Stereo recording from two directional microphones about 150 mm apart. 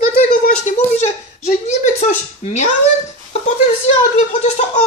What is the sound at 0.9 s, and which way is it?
Speech, 50° left (ahead or behind).